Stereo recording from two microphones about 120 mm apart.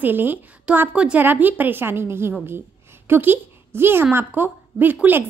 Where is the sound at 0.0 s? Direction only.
15° right (ahead or behind).